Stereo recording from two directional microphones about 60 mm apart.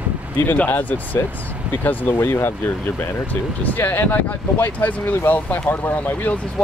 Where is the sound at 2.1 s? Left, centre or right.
Left.